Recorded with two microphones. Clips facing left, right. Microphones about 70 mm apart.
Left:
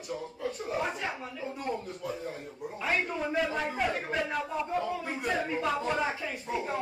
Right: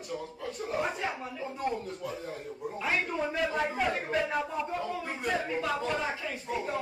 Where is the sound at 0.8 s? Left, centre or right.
Centre.